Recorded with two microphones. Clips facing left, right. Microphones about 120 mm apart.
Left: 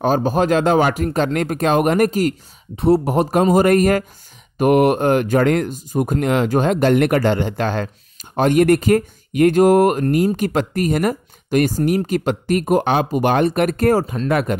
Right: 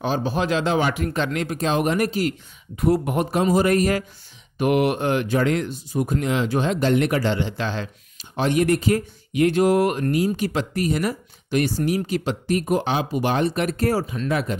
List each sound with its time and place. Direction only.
0.0 s speech: 45° left (ahead or behind)
2.7 s speech: 30° left (ahead or behind)
3.3 s speech: 50° left (ahead or behind)